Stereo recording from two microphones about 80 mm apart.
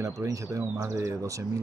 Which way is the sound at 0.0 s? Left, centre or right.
Right.